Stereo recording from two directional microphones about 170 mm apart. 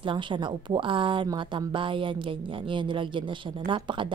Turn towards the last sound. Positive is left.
turn(degrees=-30)  # may be behind; listen again after turning